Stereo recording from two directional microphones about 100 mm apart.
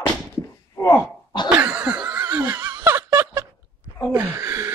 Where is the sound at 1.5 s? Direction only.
15° right (ahead or behind).